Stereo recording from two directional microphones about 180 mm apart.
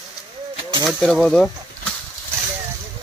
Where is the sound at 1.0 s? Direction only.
5° left (ahead or behind).